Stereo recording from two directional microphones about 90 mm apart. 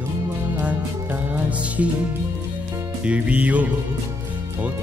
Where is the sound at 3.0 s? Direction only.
15° right (ahead or behind).